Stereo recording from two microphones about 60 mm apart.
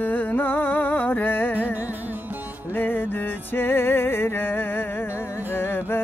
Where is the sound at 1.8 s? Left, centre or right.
Right.